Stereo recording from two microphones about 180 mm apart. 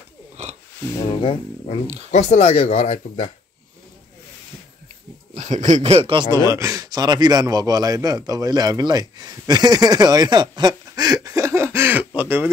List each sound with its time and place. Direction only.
0.4 s wheeze: 40° right (ahead or behind)
0.9 s speech: 30° left (ahead or behind)
5.3 s speech: 40° right (ahead or behind)
6.3 s a man's voice: 15° right (ahead or behind)